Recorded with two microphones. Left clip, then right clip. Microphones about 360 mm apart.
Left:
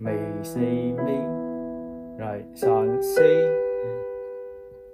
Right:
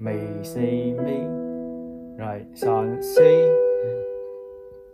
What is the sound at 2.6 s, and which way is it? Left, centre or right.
Music, centre.